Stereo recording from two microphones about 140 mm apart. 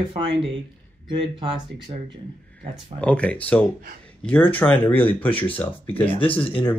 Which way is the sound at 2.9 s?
10° left (ahead or behind).